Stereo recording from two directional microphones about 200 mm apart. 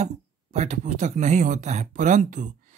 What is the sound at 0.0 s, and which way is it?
Speech, 35° right (ahead or behind).